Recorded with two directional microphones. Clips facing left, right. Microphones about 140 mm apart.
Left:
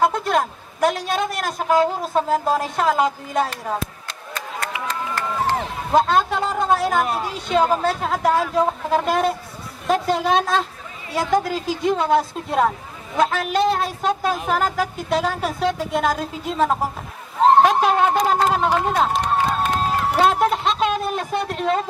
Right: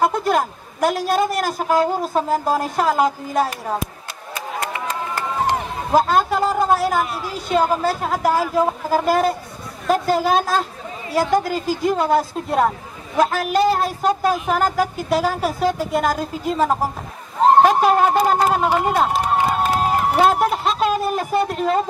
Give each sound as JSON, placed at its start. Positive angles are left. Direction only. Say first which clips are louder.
{"t": 0.0, "sound": "a woman's voice", "louder": "right 1 dB", "side_deg": 0}
{"t": 5.1, "sound": "run", "louder": "right 1 dB", "side_deg": -15}
{"t": 5.9, "sound": "a woman's voice", "louder": "right 1 dB", "side_deg": 0}
{"t": 19.4, "sound": "run", "louder": "right 2 dB", "side_deg": -10}